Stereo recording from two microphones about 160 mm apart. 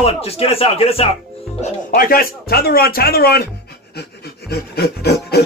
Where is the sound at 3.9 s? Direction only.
85° left.